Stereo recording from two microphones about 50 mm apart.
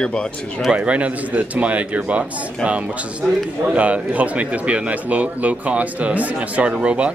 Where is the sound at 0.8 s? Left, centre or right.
Right.